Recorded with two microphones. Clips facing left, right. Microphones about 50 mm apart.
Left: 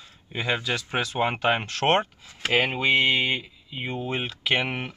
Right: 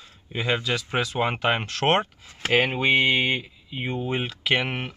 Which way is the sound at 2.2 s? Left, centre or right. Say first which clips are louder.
Even; right.